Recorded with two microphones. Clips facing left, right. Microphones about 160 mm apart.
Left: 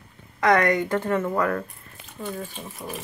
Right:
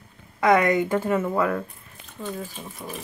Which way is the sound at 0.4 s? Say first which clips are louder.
Right 1 dB; 10° right (ahead or behind).